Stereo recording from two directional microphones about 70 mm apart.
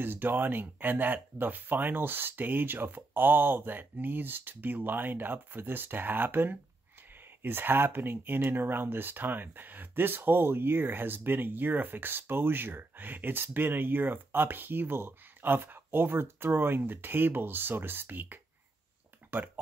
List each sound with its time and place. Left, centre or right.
0.0 s speech: right